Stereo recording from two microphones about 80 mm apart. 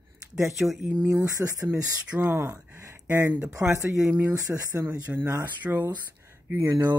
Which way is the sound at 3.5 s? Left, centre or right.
Right.